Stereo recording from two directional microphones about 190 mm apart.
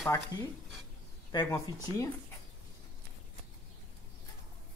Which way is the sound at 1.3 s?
20° left (ahead or behind).